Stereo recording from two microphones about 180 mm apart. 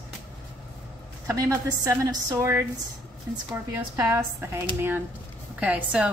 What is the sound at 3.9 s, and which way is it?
A woman's voice, 15° right (ahead or behind).